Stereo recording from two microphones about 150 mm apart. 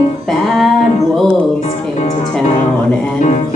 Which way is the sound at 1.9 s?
50° left (ahead or behind).